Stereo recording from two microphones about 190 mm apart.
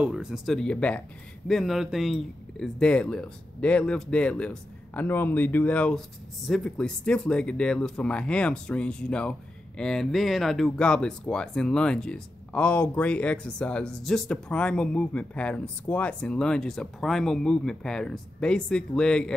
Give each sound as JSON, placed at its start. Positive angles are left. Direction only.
{"t": 0.0, "sound": "speech", "side_deg": -5}